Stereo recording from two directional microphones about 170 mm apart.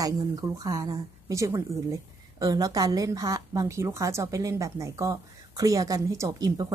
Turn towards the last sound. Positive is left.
turn(degrees=-20)  # may be behind; listen again after turning